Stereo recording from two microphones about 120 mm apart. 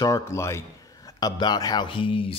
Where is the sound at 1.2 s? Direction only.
35° left (ahead or behind).